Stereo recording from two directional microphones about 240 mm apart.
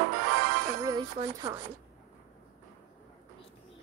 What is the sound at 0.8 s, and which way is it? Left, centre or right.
Speech, centre.